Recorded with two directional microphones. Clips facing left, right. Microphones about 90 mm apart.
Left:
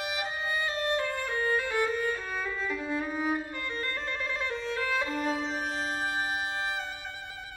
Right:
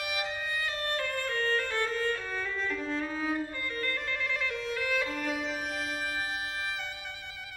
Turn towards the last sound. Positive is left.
turn(degrees=30)  # may be behind; listen again after turning